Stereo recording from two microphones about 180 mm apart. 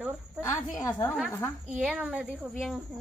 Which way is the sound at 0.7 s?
15° left (ahead or behind).